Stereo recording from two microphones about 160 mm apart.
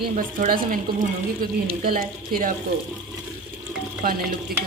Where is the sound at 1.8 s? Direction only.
60° right (ahead or behind).